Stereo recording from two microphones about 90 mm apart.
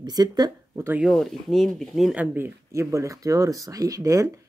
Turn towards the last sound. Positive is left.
turn(degrees=-40)  # may be behind; listen again after turning